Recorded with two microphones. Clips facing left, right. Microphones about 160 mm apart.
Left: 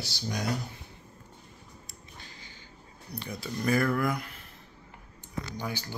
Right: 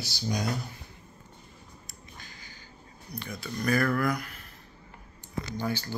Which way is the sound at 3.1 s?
30° left (ahead or behind).